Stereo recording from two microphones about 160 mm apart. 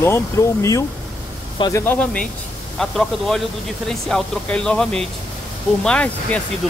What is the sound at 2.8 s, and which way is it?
Speech, centre (ahead or behind).